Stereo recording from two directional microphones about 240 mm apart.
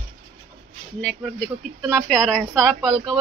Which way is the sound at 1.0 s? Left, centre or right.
Centre.